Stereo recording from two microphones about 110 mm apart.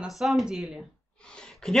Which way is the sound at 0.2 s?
Centre (ahead or behind).